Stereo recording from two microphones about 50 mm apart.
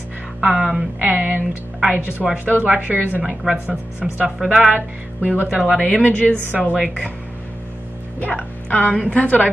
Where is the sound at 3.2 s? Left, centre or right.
Centre.